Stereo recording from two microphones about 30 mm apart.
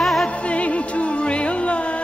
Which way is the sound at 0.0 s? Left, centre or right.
Centre.